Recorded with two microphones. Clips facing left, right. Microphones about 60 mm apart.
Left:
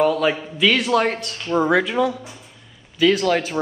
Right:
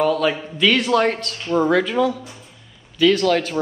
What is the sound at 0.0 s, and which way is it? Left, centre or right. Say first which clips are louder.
Speech: even; centre.